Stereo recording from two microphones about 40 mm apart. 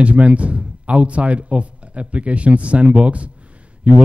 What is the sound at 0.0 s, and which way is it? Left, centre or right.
Speech, right.